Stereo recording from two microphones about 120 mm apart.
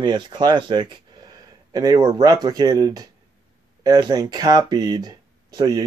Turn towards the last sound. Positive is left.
turn(degrees=-35)  # may be behind; listen again after turning